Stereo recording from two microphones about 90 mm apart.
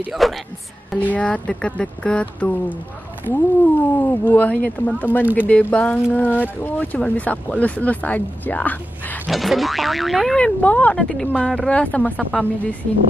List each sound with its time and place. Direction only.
0.2 s speech: centre (ahead or behind)
0.9 s speech: 15° left (ahead or behind)
5.2 s speech: 15° right (ahead or behind)
5.5 s speech: 15° left (ahead or behind)
9.3 s speech: centre (ahead or behind)
10.4 s speech: 20° left (ahead or behind)
11.0 s speech: 5° left (ahead or behind)